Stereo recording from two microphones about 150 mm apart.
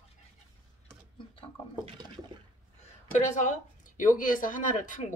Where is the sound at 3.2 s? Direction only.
55° left (ahead or behind).